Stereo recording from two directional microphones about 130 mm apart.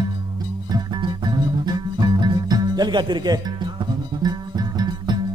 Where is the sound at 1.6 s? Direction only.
35° right (ahead or behind).